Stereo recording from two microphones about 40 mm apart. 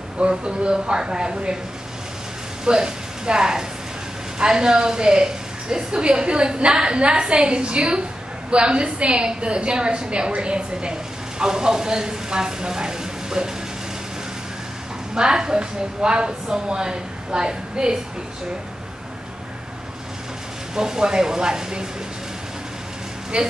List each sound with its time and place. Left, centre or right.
0.2 s a woman's voice: right
2.6 s a woman's voice: right
15.1 s a woman's voice: centre
20.7 s speech: centre
23.3 s a woman's voice: right